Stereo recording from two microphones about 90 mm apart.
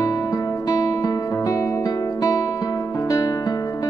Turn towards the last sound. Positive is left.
turn(degrees=40)  # may be behind; listen again after turning